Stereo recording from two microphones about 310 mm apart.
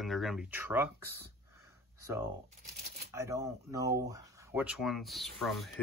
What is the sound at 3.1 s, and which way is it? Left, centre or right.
Speech, centre.